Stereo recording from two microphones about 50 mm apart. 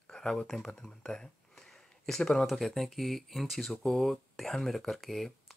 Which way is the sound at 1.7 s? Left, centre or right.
Centre.